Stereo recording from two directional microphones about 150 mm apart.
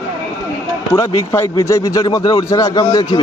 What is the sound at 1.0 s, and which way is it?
Speech, 25° left (ahead or behind).